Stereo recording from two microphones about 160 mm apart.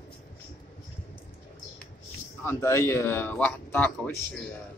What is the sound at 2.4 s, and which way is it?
Speech, 20° left (ahead or behind).